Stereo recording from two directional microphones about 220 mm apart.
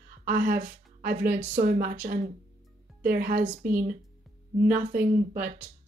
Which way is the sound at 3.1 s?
40° right (ahead or behind).